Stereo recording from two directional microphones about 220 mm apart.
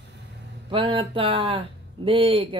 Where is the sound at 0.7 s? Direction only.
25° right (ahead or behind).